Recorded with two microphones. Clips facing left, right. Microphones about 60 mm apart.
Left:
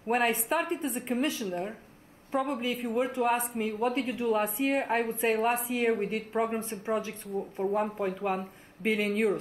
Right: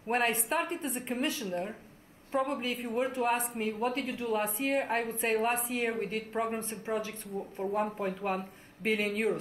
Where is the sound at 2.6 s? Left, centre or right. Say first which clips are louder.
Left 3 dB; centre.